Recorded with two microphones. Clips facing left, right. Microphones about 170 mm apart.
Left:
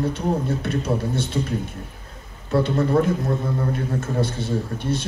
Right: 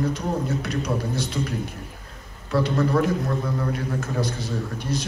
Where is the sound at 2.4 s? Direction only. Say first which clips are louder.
Left 2 dB; 25° left (ahead or behind).